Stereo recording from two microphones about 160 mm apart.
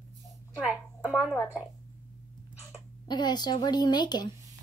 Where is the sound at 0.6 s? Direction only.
5° right (ahead or behind).